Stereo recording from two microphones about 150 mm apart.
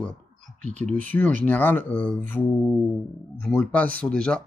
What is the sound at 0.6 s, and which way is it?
Speech, 50° right (ahead or behind).